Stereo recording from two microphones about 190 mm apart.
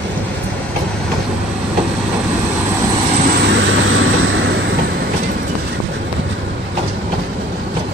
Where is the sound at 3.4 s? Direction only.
85° right.